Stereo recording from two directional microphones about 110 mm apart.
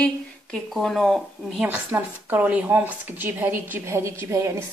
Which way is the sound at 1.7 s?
15° right (ahead or behind).